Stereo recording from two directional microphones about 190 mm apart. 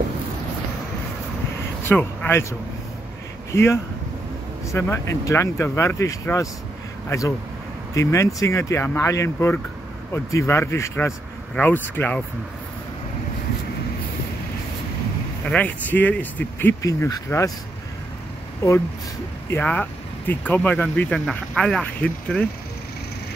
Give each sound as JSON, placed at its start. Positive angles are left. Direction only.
{"t": 1.9, "sound": "speech", "side_deg": 10}
{"t": 3.5, "sound": "speech", "side_deg": 15}
{"t": 15.5, "sound": "speech", "side_deg": 10}
{"t": 18.6, "sound": "speech", "side_deg": 15}
{"t": 19.5, "sound": "speech", "side_deg": 5}